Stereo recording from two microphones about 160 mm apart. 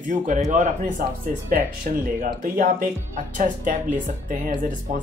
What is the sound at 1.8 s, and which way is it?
Speech, 55° right (ahead or behind).